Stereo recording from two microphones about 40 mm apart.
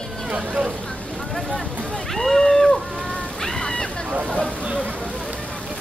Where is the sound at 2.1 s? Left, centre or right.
Centre.